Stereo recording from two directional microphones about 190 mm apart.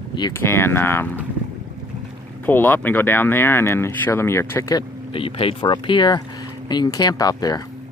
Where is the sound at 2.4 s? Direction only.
10° left (ahead or behind).